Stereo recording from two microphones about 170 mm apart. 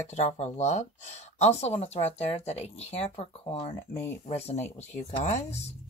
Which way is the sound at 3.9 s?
15° left (ahead or behind).